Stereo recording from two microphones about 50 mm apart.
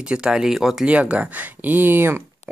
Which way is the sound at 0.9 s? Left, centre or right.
Right.